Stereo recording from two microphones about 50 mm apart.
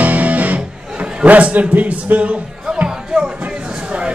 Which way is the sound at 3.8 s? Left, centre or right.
Right.